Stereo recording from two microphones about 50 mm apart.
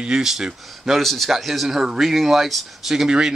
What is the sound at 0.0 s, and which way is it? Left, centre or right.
Speech, centre.